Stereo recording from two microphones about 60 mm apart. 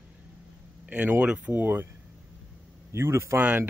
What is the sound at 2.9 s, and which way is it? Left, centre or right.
Speech, right.